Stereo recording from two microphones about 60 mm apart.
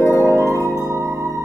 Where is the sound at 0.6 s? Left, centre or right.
Right.